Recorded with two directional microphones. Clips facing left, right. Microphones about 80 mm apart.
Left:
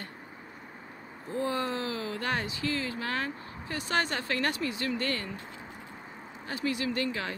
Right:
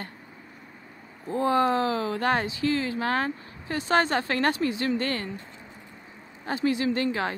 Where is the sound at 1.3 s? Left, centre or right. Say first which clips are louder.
Right 8 dB; right.